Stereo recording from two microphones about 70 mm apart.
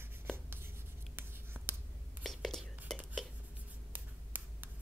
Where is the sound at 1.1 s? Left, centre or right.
Right.